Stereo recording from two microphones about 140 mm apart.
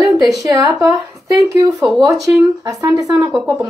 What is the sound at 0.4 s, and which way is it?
Speech, 30° right (ahead or behind).